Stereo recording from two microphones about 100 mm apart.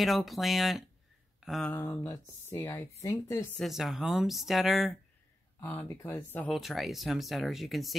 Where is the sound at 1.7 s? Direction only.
25° left (ahead or behind).